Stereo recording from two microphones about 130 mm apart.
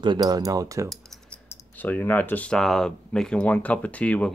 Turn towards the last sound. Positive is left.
turn(degrees=10)  # may be behind; listen again after turning